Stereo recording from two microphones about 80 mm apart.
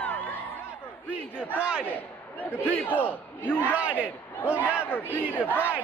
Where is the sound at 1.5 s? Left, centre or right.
Centre.